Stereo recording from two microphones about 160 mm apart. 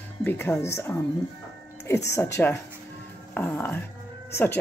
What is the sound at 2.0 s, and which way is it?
Speech, 15° left (ahead or behind).